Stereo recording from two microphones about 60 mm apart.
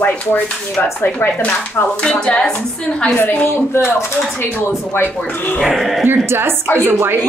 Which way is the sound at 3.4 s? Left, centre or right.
Left.